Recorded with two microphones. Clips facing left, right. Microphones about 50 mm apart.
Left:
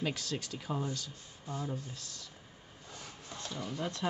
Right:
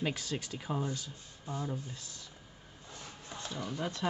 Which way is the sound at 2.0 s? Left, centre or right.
Centre.